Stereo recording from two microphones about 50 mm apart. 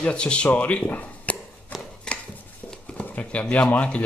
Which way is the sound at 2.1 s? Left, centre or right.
Centre.